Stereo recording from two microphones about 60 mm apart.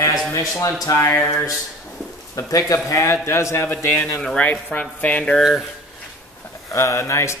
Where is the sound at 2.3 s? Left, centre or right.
Left.